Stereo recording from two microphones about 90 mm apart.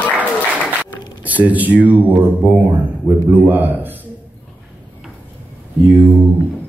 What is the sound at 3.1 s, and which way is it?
Speech, 25° right (ahead or behind).